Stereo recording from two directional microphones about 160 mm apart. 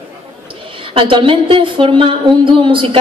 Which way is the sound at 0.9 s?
35° right (ahead or behind).